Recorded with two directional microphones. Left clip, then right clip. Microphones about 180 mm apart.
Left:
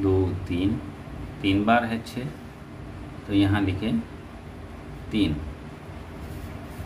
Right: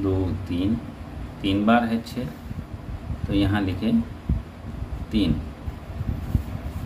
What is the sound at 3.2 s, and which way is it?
Speech, centre (ahead or behind).